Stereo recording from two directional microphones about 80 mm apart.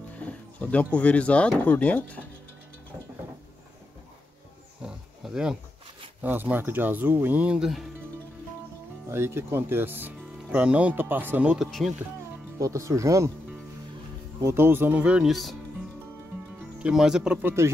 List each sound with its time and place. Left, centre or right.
0.2 s speech: centre
4.8 s roaring cats: centre
6.2 s speech: right
7.5 s speech: centre
9.1 s speech: right
11.5 s speech: centre
12.5 s speech: right
14.4 s speech: right; by 15.3 s centre
16.8 s speech: centre
17.4 s speech: right